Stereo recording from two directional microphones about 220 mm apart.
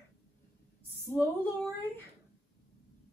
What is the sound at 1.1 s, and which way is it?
Speech, 10° left (ahead or behind).